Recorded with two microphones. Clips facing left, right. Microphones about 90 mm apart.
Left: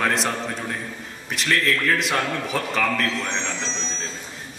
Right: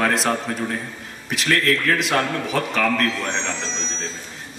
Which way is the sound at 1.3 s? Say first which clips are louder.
Right 2 dB; centre (ahead or behind).